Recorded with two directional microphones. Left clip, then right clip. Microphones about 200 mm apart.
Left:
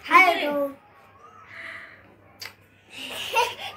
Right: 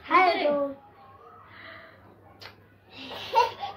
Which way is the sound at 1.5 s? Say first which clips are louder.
Left 8 dB; 25° left (ahead or behind).